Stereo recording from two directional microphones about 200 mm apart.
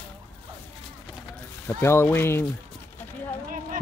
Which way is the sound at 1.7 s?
10° left (ahead or behind).